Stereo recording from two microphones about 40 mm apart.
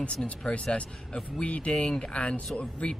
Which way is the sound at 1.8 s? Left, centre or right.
Centre.